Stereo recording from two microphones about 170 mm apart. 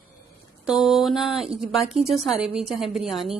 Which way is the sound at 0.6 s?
Centre (ahead or behind).